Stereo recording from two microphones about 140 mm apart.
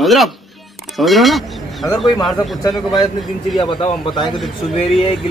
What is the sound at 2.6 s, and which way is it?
A man's voice, 30° left (ahead or behind).